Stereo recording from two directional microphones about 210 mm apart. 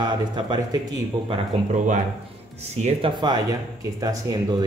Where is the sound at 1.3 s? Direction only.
35° right (ahead or behind).